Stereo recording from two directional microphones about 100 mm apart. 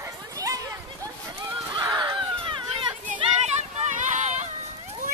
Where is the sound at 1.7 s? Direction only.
45° right (ahead or behind).